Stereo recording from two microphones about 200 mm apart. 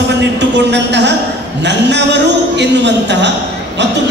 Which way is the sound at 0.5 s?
60° right (ahead or behind).